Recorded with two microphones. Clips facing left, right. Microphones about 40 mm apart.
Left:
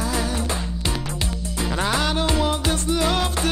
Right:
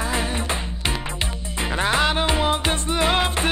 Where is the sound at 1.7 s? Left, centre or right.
Right.